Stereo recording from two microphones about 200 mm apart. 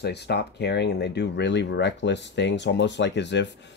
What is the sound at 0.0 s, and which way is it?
Speech, 55° left (ahead or behind).